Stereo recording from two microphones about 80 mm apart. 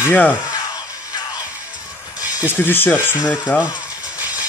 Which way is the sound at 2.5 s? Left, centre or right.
Left.